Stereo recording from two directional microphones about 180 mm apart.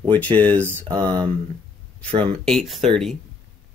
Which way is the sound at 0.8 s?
25° right (ahead or behind).